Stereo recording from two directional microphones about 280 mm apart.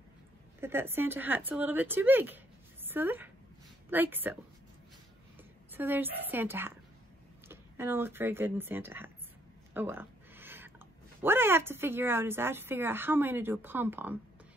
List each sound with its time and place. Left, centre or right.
0.6 s speech: centre
5.7 s speech: centre
9.8 s a sound: centre
11.1 s speech: centre